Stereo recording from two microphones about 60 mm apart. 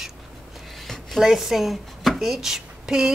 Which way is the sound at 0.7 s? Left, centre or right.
Centre.